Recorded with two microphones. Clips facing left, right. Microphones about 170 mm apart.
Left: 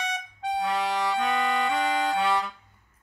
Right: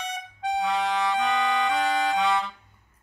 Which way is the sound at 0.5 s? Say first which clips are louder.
Right 1 dB; centre (ahead or behind).